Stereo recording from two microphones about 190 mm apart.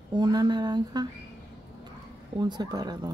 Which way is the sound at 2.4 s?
20° right (ahead or behind).